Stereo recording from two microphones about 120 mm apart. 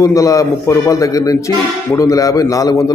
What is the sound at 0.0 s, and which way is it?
A man's voice, 25° left (ahead or behind).